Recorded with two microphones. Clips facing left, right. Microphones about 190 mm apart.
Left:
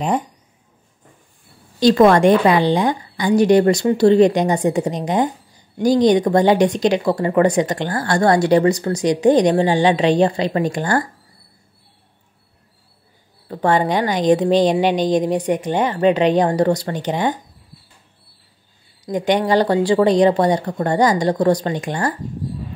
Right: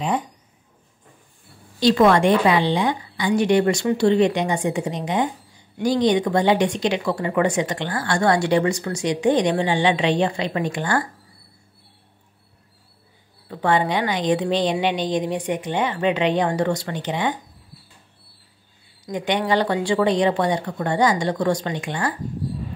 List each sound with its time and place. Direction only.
1.8 s speech: 45° left (ahead or behind)
13.5 s speech: 40° left (ahead or behind)
19.0 s speech: 40° left (ahead or behind)